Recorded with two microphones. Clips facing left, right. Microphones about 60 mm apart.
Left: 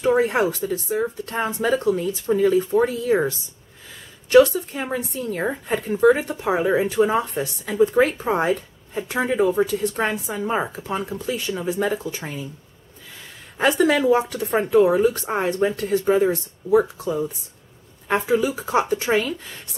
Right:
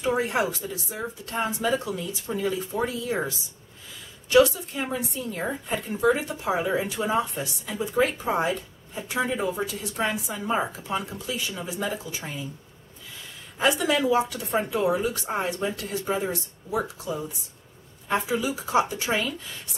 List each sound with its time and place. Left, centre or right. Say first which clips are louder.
0.0 s speech: left 6 dB; left
4.3 s speech: left 5 dB; left
5.4 s speech: left 5 dB; left
10.3 s speech: left 3 dB; left
10.8 s speech: left 3 dB; left
13.6 s speech: left 5 dB; left
15.2 s speech: left 6 dB; left